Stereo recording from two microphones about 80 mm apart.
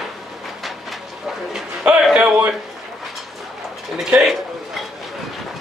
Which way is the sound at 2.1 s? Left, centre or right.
Centre.